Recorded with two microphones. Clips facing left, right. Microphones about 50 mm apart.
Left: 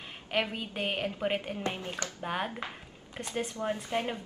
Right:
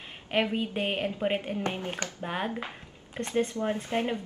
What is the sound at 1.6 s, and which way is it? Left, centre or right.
Speech, right.